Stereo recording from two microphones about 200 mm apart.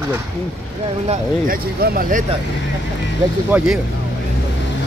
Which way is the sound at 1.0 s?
45° right (ahead or behind).